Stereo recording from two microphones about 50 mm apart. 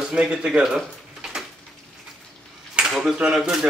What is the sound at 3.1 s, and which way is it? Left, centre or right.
Speech, centre.